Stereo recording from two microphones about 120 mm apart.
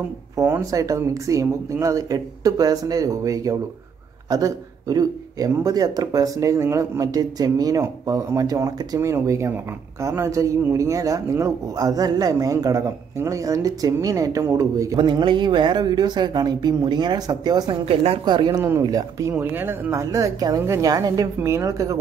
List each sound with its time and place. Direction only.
0.4 s a man's voice: 25° right (ahead or behind)
15.0 s speech: 40° right (ahead or behind)
17.8 s speech: 55° right (ahead or behind)
18.2 s speech: 40° right (ahead or behind)
18.6 s a man's voice: 25° right (ahead or behind)
19.3 s a man's voice: 20° right (ahead or behind)